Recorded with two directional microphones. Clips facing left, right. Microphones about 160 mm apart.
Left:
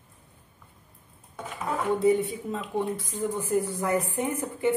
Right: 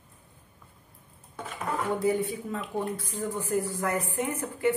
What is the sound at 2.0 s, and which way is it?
Speech, 25° left (ahead or behind).